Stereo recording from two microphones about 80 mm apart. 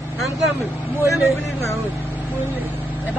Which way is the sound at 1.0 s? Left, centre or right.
Left.